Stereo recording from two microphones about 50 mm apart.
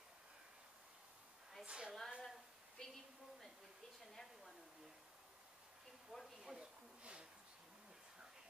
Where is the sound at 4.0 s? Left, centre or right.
Centre.